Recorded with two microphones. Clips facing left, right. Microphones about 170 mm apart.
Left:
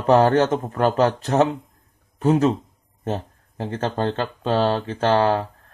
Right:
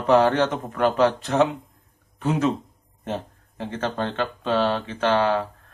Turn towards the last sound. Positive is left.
turn(degrees=40)  # may be behind; listen again after turning